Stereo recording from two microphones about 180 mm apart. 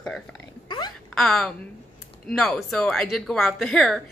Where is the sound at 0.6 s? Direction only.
25° left (ahead or behind).